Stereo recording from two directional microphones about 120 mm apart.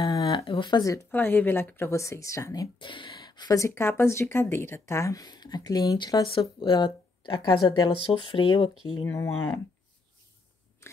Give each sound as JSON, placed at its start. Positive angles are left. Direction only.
{"t": 0.0, "sound": "a sound", "side_deg": 40}
{"t": 1.1, "sound": "speech", "side_deg": 15}
{"t": 2.8, "sound": "speech", "side_deg": 40}
{"t": 6.6, "sound": "speech", "side_deg": 45}
{"t": 9.0, "sound": "speech", "side_deg": 25}
{"t": 10.8, "sound": "biting", "side_deg": 25}